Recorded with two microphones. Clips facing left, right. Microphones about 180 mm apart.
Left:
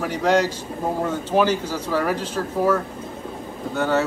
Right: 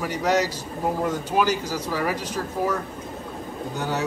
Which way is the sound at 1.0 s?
10° right (ahead or behind).